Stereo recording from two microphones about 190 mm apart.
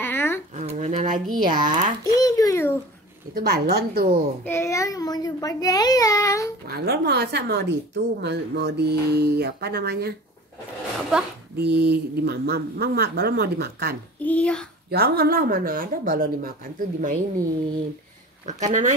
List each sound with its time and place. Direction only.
0.0 s a sound: 10° left (ahead or behind)
0.6 s a sound: 40° right (ahead or behind)
1.5 s speech: 40° right (ahead or behind)
2.1 s babbling: 20° left (ahead or behind)
3.3 s a woman's voice: 55° right (ahead or behind)
4.5 s a child's voice: 15° left (ahead or behind)
6.7 s a woman's voice: 60° right (ahead or behind)
11.5 s a woman's voice: 60° right (ahead or behind)
14.2 s a child's voice: 5° left (ahead or behind)
14.9 s speech: 55° right (ahead or behind)
18.4 s speech: 40° right (ahead or behind)